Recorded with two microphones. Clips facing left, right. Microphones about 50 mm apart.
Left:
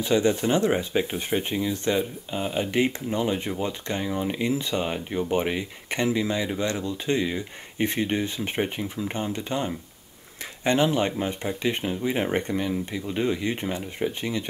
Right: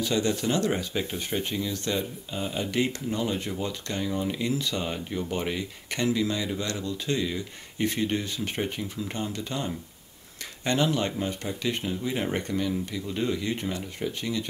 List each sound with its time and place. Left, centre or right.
0.0 s speech: left